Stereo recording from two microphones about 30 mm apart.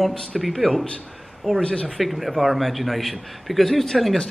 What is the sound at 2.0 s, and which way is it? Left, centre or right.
A man's voice, centre.